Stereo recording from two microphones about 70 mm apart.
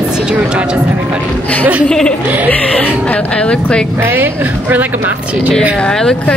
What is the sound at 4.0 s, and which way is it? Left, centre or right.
A woman's voice, right.